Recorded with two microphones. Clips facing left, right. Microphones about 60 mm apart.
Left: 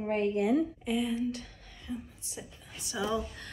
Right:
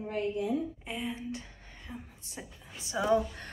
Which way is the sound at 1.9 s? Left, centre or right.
Right.